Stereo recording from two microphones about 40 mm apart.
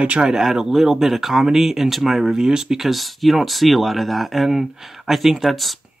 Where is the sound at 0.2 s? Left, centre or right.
Centre.